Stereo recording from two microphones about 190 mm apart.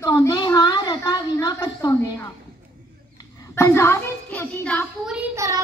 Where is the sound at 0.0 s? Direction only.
20° left (ahead or behind).